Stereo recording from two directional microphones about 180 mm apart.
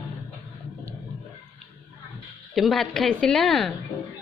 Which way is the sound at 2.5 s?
Centre (ahead or behind).